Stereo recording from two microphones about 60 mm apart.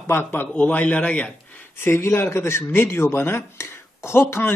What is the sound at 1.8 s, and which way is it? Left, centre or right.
A man's voice, left.